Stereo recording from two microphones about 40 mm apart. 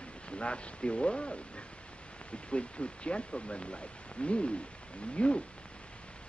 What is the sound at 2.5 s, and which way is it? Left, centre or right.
Speech, left.